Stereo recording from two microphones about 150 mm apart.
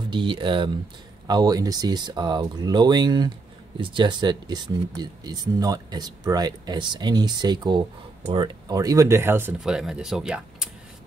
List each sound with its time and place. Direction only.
0.1 s speech: 35° right (ahead or behind); by 9.6 s 15° right (ahead or behind)
9.6 s speech: 5° right (ahead or behind)